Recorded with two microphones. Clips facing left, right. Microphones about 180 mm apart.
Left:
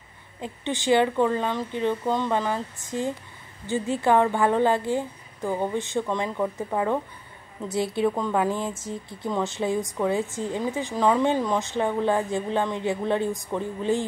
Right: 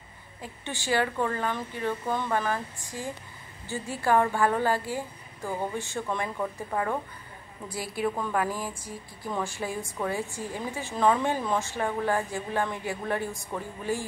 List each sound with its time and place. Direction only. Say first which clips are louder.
0.4 s a woman's voice: left 8 dB; 20° left (ahead or behind)